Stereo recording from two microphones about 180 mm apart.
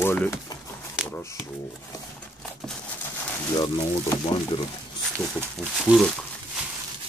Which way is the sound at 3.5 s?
25° left (ahead or behind).